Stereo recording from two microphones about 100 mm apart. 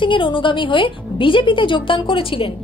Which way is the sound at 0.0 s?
55° left (ahead or behind).